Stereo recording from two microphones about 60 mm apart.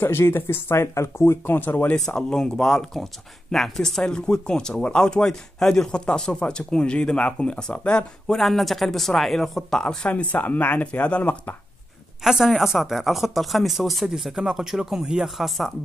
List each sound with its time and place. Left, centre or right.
0.0 s speech: left
2.0 s speech: centre
8.4 s speech: centre
10.0 s speech: left
12.2 s speech: centre